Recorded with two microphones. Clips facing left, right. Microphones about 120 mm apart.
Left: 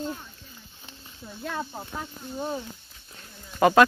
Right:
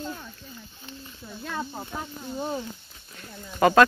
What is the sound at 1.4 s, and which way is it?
Speech, centre (ahead or behind).